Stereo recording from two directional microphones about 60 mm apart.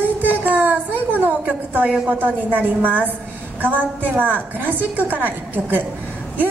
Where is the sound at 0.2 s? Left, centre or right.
Right.